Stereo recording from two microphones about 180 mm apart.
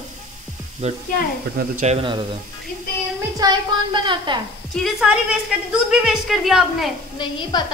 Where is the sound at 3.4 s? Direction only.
20° right (ahead or behind).